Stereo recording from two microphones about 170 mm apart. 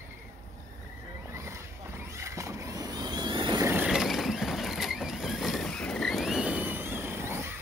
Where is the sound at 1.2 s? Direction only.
15° right (ahead or behind).